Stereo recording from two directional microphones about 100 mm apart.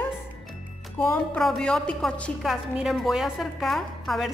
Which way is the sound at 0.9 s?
20° left (ahead or behind).